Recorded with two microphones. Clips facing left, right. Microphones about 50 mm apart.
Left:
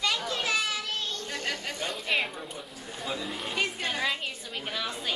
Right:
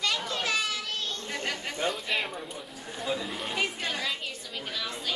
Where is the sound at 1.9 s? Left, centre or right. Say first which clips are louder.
Left 1 dB; centre.